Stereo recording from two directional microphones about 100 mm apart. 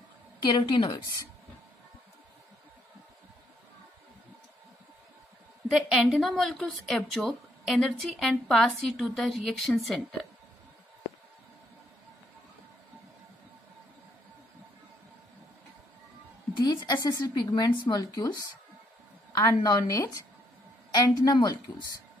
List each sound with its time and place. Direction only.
0.4 s a woman's voice: 50° left (ahead or behind)
5.7 s a woman's voice: 5° right (ahead or behind)
16.5 s a woman's voice: 50° left (ahead or behind)